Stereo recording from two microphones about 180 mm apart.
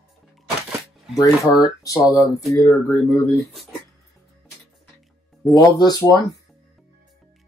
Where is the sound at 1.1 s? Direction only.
20° left (ahead or behind).